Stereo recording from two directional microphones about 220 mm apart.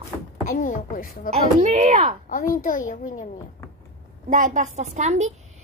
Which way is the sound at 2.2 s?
35° left (ahead or behind).